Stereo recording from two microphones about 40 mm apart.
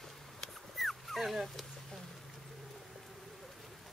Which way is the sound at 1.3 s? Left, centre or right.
Centre.